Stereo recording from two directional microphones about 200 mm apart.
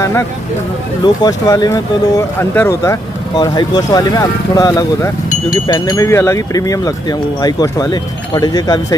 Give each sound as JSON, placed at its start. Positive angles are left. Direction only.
{"t": 1.0, "sound": "speech", "side_deg": 20}